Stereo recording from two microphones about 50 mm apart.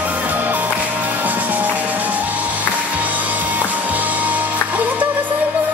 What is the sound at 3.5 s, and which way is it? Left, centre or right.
Music, right.